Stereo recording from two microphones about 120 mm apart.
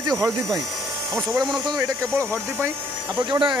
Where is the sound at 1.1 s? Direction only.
25° right (ahead or behind).